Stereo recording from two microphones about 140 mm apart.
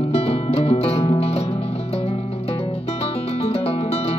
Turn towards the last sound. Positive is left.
turn(degrees=45)  # may be behind; listen again after turning